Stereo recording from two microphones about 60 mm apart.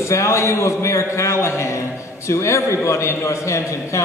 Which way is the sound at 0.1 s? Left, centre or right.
Left.